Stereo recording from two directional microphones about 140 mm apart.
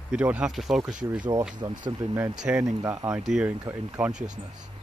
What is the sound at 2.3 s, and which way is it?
Speech, 5° right (ahead or behind).